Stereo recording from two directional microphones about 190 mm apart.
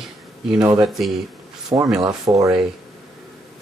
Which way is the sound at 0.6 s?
15° right (ahead or behind).